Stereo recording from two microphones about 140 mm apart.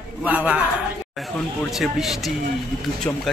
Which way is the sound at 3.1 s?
15° left (ahead or behind).